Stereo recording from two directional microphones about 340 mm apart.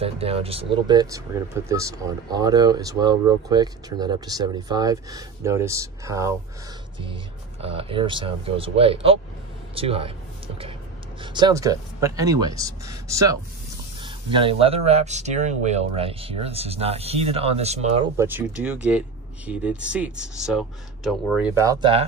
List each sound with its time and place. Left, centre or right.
0.0 s speech: centre
7.6 s speech: centre
18.2 s speech: centre